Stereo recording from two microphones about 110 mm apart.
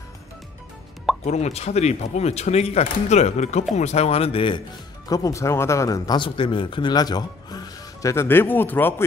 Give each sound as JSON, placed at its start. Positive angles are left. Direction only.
{"t": 1.2, "sound": "speech", "side_deg": 90}
{"t": 5.1, "sound": "speech", "side_deg": 30}
{"t": 6.1, "sound": "speech", "side_deg": 50}